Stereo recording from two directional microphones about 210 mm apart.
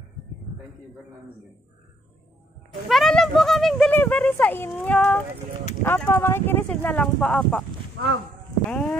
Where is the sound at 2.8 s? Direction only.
Centre (ahead or behind).